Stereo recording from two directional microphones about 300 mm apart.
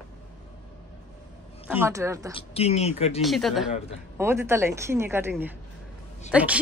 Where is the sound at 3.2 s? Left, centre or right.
Centre.